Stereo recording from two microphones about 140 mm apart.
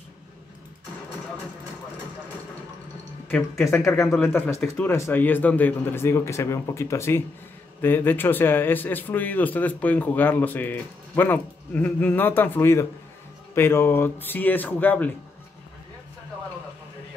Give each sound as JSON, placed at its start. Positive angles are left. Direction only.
{"t": 3.3, "sound": "speech", "side_deg": 15}